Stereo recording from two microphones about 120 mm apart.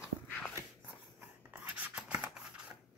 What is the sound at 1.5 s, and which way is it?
Scissors, 15° right (ahead or behind).